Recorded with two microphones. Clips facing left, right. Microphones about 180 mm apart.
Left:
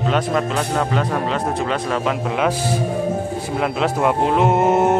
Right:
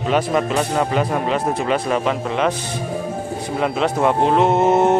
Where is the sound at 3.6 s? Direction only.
5° left (ahead or behind).